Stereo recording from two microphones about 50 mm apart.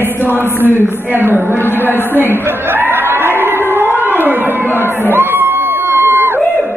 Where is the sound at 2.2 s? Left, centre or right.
Right.